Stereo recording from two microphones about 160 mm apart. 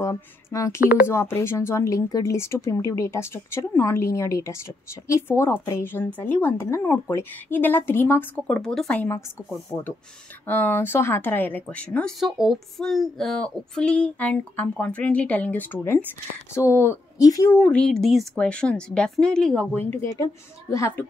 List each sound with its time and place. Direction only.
0.0 s a woman's voice: 20° left (ahead or behind)
17.5 s a woman's voice: 10° left (ahead or behind)